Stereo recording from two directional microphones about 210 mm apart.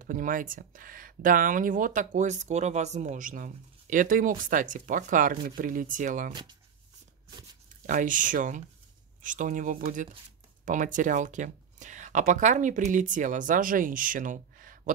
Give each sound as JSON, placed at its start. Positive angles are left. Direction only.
{"t": 0.0, "sound": "speech", "side_deg": -40}
{"t": 7.8, "sound": "speech", "side_deg": -40}